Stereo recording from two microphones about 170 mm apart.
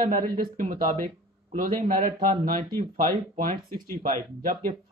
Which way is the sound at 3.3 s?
55° right (ahead or behind).